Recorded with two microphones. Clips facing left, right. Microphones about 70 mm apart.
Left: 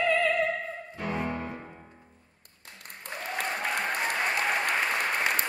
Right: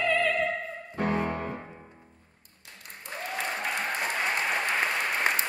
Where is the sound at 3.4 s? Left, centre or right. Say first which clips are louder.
Left 1 dB; left.